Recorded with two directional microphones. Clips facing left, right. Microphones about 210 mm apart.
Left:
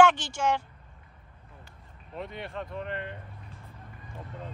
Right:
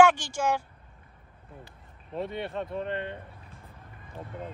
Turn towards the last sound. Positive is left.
turn(degrees=-25)  # may be behind; listen again after turning